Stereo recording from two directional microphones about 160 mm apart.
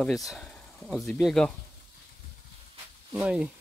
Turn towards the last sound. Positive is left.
turn(degrees=-5)  # may be behind; listen again after turning